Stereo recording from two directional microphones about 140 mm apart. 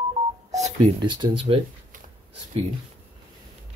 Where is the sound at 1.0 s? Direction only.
35° right (ahead or behind).